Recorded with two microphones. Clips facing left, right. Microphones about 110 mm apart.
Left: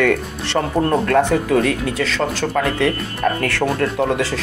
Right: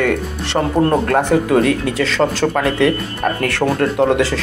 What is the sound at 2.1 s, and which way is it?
Speech, 90° right.